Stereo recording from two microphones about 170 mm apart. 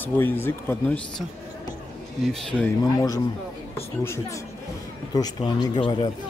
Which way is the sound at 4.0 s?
15° left (ahead or behind).